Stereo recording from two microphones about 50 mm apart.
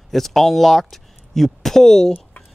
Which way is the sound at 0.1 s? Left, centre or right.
Centre.